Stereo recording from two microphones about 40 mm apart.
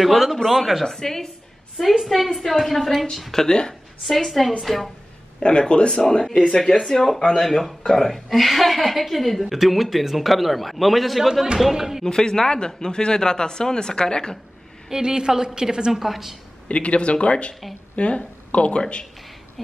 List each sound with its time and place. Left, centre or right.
0.0 s a woman's voice: centre
0.8 s speech: centre
1.8 s a woman's voice: centre
3.4 s speech: centre
4.2 s a woman's voice: centre
5.4 s speech: left
5.9 s a woman's voice: centre
12.0 s speech: centre
14.9 s a woman's voice: centre
16.6 s speech: left